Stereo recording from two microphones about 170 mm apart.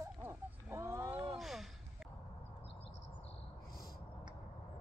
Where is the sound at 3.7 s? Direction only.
60° left (ahead or behind).